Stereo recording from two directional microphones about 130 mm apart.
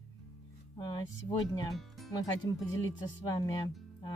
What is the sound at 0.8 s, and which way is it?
Speech, 35° left (ahead or behind).